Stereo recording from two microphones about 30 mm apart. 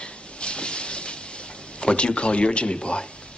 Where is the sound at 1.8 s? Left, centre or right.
Left.